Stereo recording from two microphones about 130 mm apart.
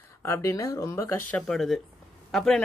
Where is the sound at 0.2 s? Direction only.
20° left (ahead or behind).